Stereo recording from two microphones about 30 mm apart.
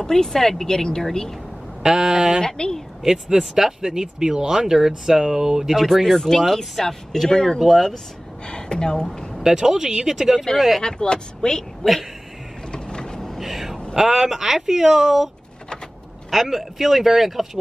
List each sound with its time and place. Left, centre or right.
0.0 s speech: centre
1.8 s speech: centre
2.4 s speech: left
3.1 s speech: right
6.0 s speech: centre
7.5 s speech: centre
8.5 s speech: left
9.4 s speech: centre
10.8 s speech: left
11.8 s speech: centre
12.7 s mechanisms: left
13.4 s a sound: centre
13.9 s speech: centre
16.3 s speech: centre